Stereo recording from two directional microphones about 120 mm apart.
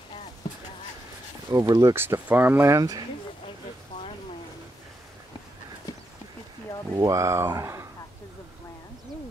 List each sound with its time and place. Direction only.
1.5 s speech: 30° right (ahead or behind)
7.0 s speech: 25° right (ahead or behind)